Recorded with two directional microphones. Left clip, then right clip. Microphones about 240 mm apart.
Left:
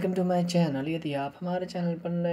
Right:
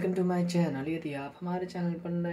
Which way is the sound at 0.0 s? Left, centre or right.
Left.